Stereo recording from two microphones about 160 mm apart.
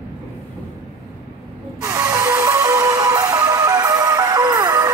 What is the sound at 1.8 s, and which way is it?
Music, 20° right (ahead or behind).